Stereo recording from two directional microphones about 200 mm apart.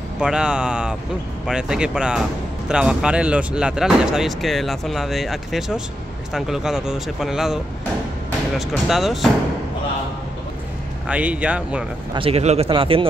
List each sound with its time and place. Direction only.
0.2 s speech: 5° right (ahead or behind)
11.1 s a man's voice: 5° right (ahead or behind)
12.1 s speech: 30° right (ahead or behind)